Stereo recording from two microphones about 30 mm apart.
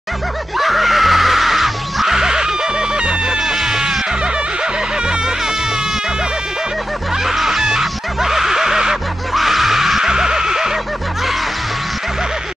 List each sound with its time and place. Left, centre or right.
0.6 s music: centre
2.1 s music: right
3.3 s music: centre
7.2 s snicker: centre
9.3 s music: centre